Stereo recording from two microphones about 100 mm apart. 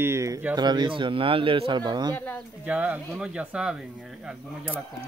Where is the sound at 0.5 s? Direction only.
45° right (ahead or behind).